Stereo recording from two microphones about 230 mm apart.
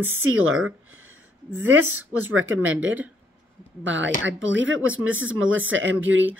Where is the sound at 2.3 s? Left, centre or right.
Right.